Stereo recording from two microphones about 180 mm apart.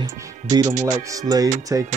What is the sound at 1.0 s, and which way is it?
Speech, 20° right (ahead or behind).